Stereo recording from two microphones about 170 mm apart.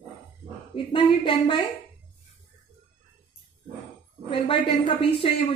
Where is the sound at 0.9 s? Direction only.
30° left (ahead or behind).